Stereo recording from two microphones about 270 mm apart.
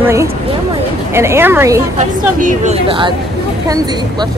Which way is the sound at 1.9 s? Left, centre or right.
Right.